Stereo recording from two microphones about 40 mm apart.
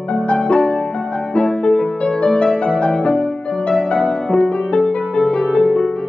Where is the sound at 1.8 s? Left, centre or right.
Left.